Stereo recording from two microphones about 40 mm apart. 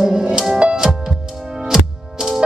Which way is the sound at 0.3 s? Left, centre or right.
Centre.